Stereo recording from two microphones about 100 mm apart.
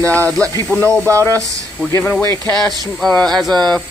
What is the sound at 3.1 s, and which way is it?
Speech, 5° left (ahead or behind).